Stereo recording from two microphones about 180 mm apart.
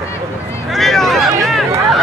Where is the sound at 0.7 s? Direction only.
Centre (ahead or behind).